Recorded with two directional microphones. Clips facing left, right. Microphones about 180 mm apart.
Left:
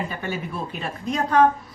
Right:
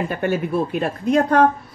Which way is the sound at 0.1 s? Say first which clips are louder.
Right 9 dB; 60° right (ahead or behind).